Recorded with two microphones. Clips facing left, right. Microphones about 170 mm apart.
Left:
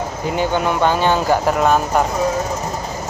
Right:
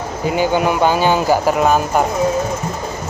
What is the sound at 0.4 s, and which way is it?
Speech, 5° right (ahead or behind).